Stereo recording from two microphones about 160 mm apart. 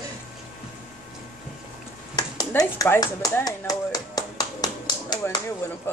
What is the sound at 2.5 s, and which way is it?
Clapping, 20° left (ahead or behind).